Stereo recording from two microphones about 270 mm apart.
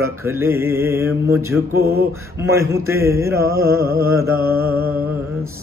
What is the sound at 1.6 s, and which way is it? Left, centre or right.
Mantra, right.